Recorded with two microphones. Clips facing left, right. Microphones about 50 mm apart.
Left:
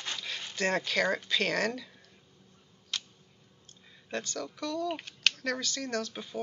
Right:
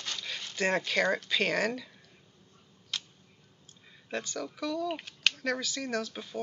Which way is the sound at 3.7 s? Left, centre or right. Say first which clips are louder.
Even; centre.